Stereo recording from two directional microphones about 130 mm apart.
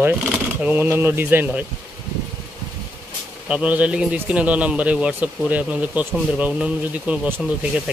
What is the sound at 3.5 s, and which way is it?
A man's voice, 10° right (ahead or behind).